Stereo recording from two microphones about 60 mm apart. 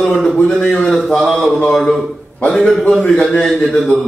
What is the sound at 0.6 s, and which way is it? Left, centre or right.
Speech, left.